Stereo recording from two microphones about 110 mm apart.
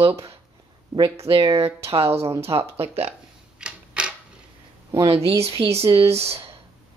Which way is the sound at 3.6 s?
10° right (ahead or behind).